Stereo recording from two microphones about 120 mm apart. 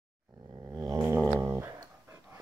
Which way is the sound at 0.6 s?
20° right (ahead or behind).